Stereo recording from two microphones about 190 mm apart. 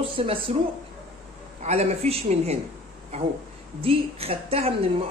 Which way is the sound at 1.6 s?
35° right (ahead or behind).